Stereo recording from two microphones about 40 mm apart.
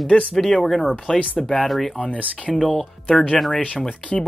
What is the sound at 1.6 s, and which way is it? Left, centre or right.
Speech, centre.